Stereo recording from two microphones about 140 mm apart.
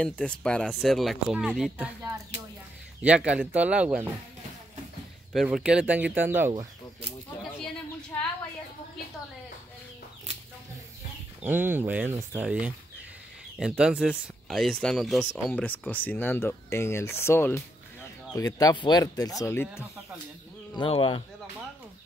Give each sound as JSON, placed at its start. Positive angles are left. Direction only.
{"t": 0.0, "sound": "speech", "side_deg": 5}
{"t": 3.0, "sound": "speech", "side_deg": -10}
{"t": 5.3, "sound": "speech", "side_deg": -5}
{"t": 8.1, "sound": "a sound", "side_deg": 15}
{"t": 11.4, "sound": "speech", "side_deg": -15}
{"t": 15.5, "sound": "speech", "side_deg": 10}
{"t": 19.4, "sound": "speech", "side_deg": 15}
{"t": 20.7, "sound": "speech", "side_deg": 40}